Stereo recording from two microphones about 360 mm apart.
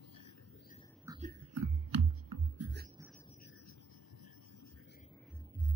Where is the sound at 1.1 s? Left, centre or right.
Centre.